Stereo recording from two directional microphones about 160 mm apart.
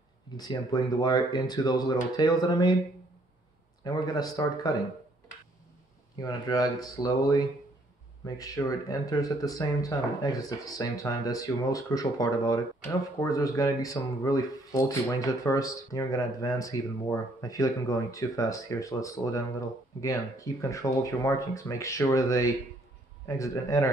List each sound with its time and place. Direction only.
0.4 s speech: 25° left (ahead or behind)
3.8 s speech: 25° left (ahead or behind)
6.1 s speech: 25° left (ahead or behind)